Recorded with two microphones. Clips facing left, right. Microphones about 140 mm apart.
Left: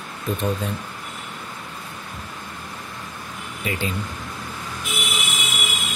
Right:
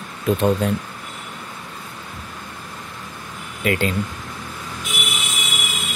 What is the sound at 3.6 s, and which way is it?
Speech, 70° right (ahead or behind).